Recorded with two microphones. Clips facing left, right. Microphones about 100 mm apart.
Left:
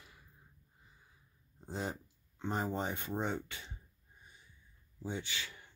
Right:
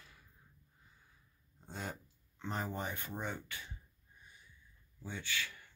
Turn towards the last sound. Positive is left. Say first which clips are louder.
# right 3 dB
turn(degrees=20)  # may be behind; listen again after turning